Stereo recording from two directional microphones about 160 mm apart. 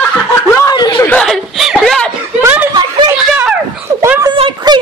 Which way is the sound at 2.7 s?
25° right (ahead or behind).